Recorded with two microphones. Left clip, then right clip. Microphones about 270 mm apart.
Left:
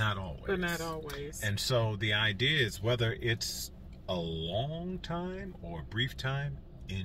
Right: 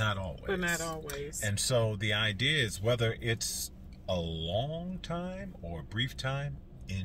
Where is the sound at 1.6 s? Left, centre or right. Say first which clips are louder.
Right 1 dB; centre.